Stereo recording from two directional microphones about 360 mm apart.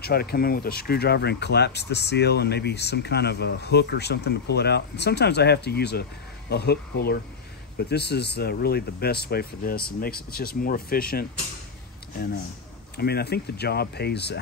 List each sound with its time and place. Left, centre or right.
0.0 s speech: left
12.9 s speech: left